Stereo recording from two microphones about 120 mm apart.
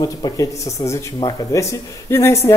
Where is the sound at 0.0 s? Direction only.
30° left (ahead or behind).